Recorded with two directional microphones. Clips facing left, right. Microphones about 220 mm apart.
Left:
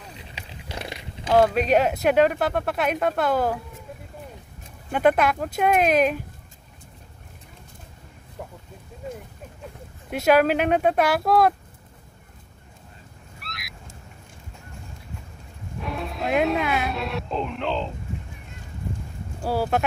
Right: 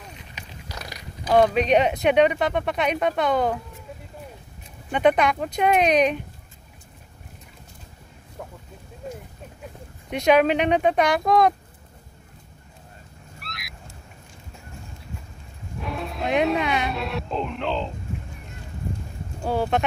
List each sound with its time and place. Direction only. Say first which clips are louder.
0.1 s a sound: left 1 dB; 30° left (ahead or behind)
1.3 s speech: right 1 dB; centre (ahead or behind)
4.9 s speech: even; 5° left (ahead or behind)
10.1 s speech: even; 5° left (ahead or behind)
13.4 s a sound: even; centre (ahead or behind)
15.8 s speech: even; centre (ahead or behind)
19.4 s speech: even; 5° left (ahead or behind)